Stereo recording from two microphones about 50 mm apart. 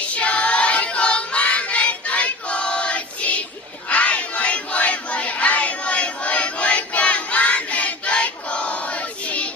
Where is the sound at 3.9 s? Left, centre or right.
Left.